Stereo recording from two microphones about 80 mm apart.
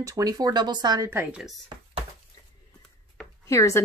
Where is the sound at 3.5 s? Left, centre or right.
Left.